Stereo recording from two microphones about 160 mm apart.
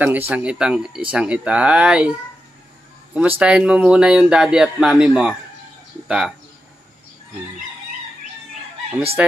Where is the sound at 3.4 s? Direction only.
5° right (ahead or behind).